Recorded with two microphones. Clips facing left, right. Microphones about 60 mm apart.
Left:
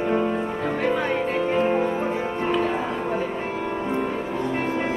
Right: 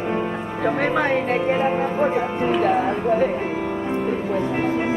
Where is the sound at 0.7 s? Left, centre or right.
Right.